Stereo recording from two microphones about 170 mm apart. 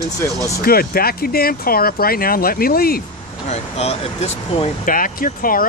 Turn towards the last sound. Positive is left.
turn(degrees=55)  # may be behind; listen again after turning